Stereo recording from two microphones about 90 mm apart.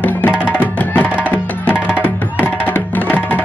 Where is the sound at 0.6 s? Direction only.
20° left (ahead or behind).